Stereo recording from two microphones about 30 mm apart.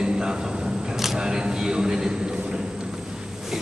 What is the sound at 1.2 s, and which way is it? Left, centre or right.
Speech, right.